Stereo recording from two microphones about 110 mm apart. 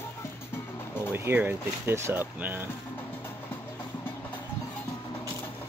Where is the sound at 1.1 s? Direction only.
20° right (ahead or behind).